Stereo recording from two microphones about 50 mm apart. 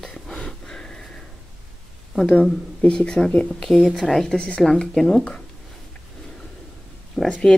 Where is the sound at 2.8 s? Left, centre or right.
Centre.